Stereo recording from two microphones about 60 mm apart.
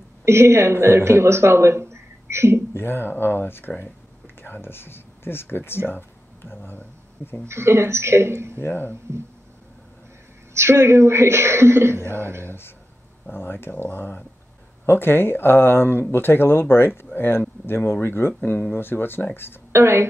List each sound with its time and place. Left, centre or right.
0.2 s speech: right
2.7 s speech: left
7.4 s a woman's voice: right
8.5 s speech: left
10.5 s a woman's voice: right
13.3 s speech: left
19.7 s a woman's voice: right